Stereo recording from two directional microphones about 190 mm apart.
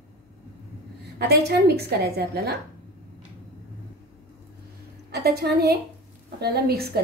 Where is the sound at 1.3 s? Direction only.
55° right (ahead or behind).